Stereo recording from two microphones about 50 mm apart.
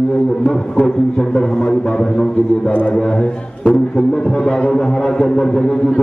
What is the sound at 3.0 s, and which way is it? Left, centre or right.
A man's voice, centre.